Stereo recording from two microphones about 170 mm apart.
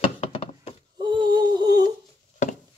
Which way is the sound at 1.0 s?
25° right (ahead or behind).